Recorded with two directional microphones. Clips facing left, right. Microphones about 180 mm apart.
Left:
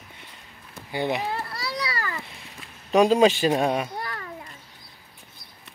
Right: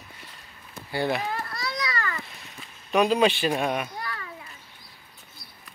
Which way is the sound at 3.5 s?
30° left (ahead or behind).